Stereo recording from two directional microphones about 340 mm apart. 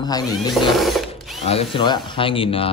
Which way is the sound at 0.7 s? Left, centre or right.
Centre.